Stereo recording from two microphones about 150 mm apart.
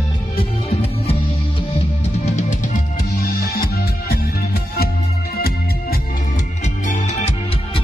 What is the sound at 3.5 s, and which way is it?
Music, 90° left.